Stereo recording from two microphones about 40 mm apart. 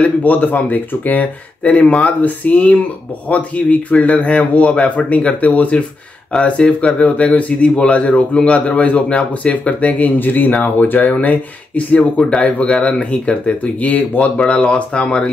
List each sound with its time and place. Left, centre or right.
0.0 s speech: left
1.6 s speech: left
6.3 s speech: centre
7.0 s speech: left
12.0 s speech: left